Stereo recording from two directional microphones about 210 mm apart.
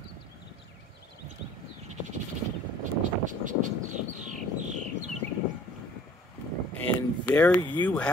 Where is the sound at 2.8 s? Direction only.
35° right (ahead or behind).